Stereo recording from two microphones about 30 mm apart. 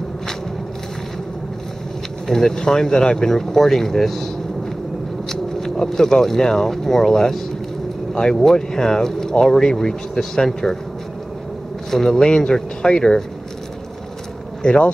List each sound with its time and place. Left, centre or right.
2.2 s speech: centre
5.3 s speech: centre
8.1 s speech: left
8.4 s speech: centre
11.9 s speech: centre
14.6 s speech: left